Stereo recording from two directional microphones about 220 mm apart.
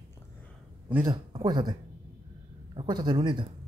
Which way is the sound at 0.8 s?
10° right (ahead or behind).